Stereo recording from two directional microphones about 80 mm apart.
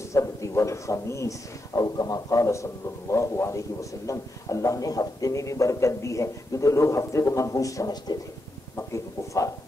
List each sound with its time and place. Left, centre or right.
0.1 s a man's voice: left
1.8 s a man's voice: left
8.7 s a man's voice: left